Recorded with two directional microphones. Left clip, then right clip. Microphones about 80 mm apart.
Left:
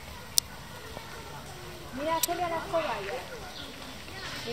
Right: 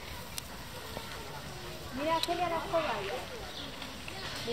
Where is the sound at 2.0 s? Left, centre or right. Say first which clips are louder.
Left 1 dB; left.